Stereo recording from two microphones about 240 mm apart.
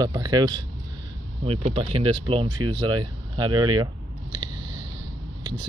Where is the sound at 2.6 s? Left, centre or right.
Centre.